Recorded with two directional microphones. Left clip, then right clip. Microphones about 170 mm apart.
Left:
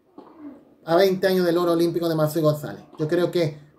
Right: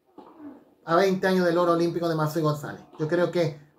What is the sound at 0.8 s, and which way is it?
Speech, 45° left (ahead or behind).